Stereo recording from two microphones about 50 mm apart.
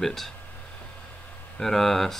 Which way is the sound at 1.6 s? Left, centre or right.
Centre.